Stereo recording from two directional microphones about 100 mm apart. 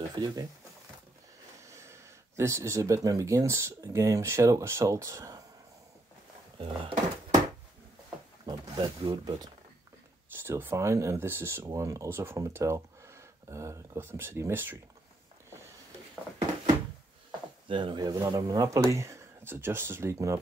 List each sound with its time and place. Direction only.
0.1 s speech: 45° right (ahead or behind)
1.6 s speech: 30° right (ahead or behind)
6.6 s speech: 65° right (ahead or behind)
8.5 s speech: 45° right (ahead or behind)
10.4 s speech: 25° right (ahead or behind)
17.6 s speech: 55° right (ahead or behind); by 20.3 s 30° right (ahead or behind)